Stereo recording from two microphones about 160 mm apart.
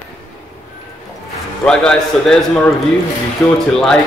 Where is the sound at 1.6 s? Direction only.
5° left (ahead or behind).